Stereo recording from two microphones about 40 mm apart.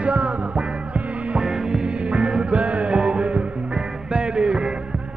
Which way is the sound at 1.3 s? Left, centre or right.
Centre.